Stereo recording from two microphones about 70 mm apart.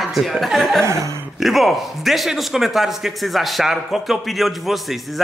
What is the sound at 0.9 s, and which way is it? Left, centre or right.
Speech, right.